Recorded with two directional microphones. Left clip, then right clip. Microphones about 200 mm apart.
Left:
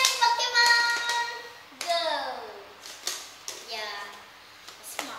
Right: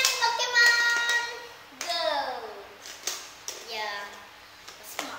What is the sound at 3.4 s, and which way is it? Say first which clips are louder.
Clapping: right 3 dB; 5° right (ahead or behind).